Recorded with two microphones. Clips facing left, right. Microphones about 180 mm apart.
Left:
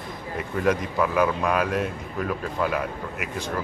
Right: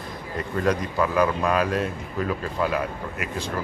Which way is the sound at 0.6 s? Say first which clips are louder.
Even; 5° left (ahead or behind).